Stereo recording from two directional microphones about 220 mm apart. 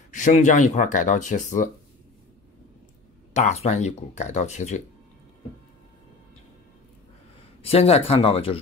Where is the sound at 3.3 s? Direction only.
30° left (ahead or behind).